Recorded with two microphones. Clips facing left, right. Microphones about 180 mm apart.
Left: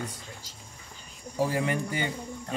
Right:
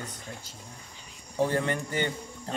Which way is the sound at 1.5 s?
10° left (ahead or behind).